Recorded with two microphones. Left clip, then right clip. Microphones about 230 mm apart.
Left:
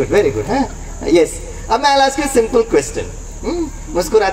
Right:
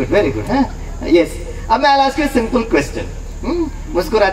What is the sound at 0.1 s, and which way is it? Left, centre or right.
A man's voice, left.